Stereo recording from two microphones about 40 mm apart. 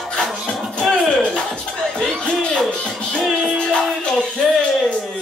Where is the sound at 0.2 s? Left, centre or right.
Centre.